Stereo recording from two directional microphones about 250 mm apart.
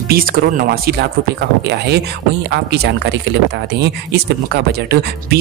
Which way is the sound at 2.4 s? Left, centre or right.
Right.